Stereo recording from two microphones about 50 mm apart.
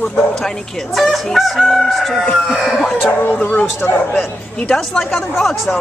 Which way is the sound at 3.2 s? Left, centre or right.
Left.